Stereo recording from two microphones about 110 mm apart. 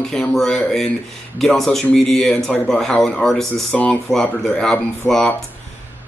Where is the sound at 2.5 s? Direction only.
15° left (ahead or behind).